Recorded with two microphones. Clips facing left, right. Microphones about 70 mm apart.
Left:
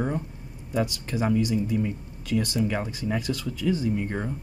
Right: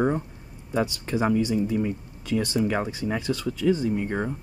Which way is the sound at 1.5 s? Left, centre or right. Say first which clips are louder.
Right 2 dB; centre.